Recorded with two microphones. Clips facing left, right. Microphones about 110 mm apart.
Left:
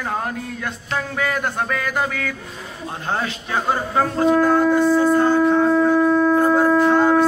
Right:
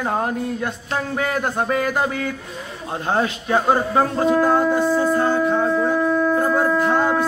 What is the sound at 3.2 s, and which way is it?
Speech, 25° right (ahead or behind).